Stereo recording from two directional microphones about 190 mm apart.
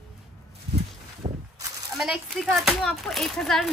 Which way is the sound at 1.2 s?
25° right (ahead or behind).